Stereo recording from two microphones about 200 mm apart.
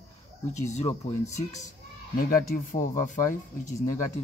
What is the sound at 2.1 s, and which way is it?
Speech, 45° left (ahead or behind).